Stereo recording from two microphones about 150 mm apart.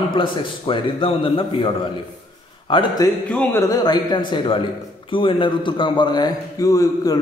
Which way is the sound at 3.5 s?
15° left (ahead or behind).